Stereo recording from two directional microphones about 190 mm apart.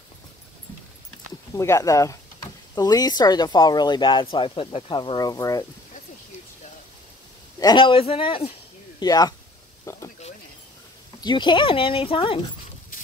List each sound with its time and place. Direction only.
1.5 s speech: 15° left (ahead or behind)
7.6 s speech: 25° left (ahead or behind)
9.9 s a sound: 15° left (ahead or behind)
11.1 s speech: 25° left (ahead or behind)